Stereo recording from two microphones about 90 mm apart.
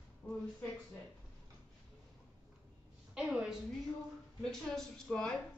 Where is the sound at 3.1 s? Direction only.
10° right (ahead or behind).